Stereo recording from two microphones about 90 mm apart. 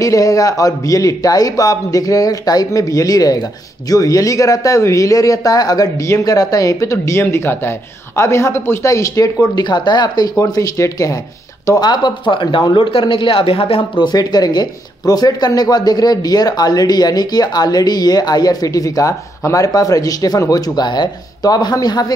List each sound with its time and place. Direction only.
0.0 s a man's voice: 40° left (ahead or behind)
9.6 s a man's voice: 55° left (ahead or behind); by 11.1 s 40° left (ahead or behind)
11.8 s a man's voice: 55° left (ahead or behind)